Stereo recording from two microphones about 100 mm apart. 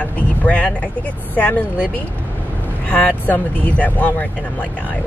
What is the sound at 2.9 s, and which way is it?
Speech, 15° left (ahead or behind).